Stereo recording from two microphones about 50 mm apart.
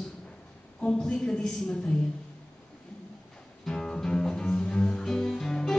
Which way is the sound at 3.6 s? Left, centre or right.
Centre.